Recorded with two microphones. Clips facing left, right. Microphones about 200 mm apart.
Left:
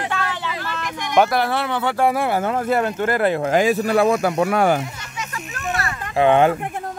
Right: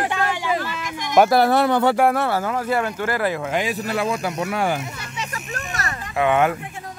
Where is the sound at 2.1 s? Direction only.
15° left (ahead or behind).